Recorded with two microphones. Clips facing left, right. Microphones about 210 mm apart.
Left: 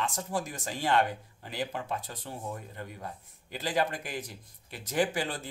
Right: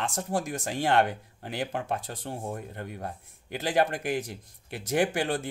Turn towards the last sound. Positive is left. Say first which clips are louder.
# right 3 dB
turn(degrees=-65)  # may be behind; listen again after turning